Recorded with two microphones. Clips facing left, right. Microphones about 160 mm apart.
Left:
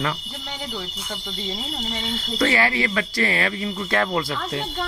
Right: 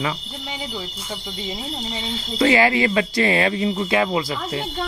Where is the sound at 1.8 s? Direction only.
10° right (ahead or behind).